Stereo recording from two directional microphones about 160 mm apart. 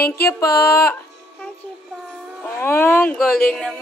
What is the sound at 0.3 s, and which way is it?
Music, 15° left (ahead or behind).